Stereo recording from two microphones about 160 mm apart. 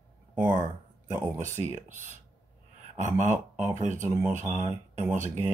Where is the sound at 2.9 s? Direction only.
50° right (ahead or behind).